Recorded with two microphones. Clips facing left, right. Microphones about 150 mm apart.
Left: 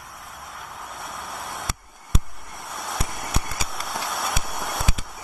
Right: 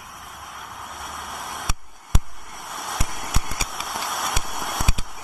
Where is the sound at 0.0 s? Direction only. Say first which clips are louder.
Even; centre (ahead or behind).